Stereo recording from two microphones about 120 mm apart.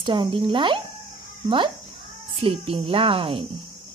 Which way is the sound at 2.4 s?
50° right (ahead or behind).